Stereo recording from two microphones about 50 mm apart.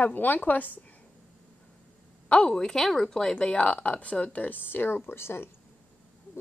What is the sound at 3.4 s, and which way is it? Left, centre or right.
Speech, left.